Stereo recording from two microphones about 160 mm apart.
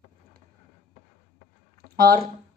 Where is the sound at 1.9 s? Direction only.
65° right (ahead or behind).